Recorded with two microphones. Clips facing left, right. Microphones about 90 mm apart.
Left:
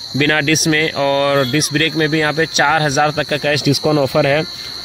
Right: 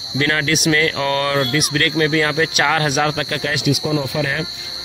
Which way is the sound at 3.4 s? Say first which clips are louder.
Left 4 dB; 60° left (ahead or behind).